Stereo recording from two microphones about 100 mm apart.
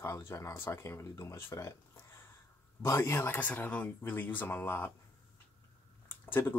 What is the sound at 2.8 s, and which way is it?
Speech, 30° left (ahead or behind).